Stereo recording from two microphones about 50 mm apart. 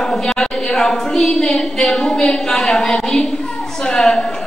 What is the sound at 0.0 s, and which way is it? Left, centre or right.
A woman's voice, centre.